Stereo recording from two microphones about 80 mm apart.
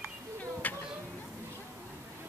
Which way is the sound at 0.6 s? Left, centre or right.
Left.